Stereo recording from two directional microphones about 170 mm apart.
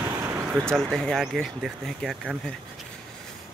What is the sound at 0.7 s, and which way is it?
Speech, centre (ahead or behind).